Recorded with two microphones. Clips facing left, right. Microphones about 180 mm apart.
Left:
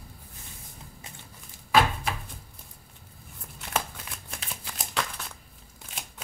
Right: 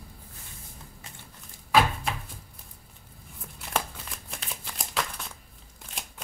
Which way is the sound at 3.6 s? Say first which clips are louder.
Even; centre (ahead or behind).